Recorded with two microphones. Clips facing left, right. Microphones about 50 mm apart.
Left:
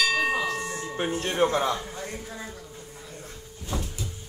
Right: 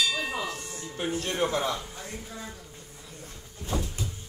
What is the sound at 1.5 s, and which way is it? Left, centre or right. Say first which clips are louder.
Speech: left 3 dB; centre.